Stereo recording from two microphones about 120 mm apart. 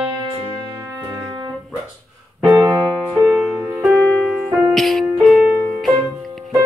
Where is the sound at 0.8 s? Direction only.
20° right (ahead or behind).